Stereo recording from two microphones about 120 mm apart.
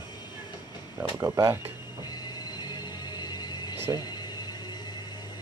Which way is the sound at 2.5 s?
35° left (ahead or behind).